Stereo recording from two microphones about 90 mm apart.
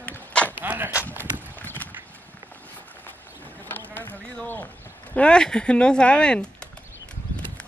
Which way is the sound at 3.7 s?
20° left (ahead or behind).